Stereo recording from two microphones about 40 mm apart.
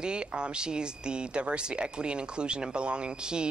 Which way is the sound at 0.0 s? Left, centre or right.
Right.